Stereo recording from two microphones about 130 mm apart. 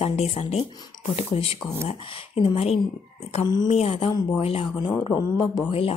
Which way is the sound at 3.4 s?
30° left (ahead or behind).